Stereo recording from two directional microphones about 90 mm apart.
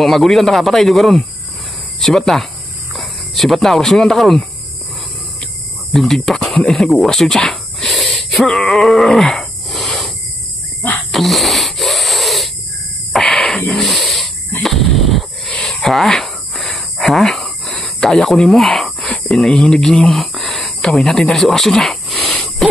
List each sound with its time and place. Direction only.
0.0 s a man's voice: centre (ahead or behind)
5.9 s a man's voice: 5° left (ahead or behind)
6.5 s a sound: 5° left (ahead or behind)
11.1 s wheeze: centre (ahead or behind)
13.1 s a sound: 5° left (ahead or behind)
19.2 s speech: 5° left (ahead or behind)